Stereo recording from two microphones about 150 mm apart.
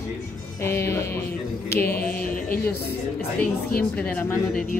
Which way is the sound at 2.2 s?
65° left (ahead or behind).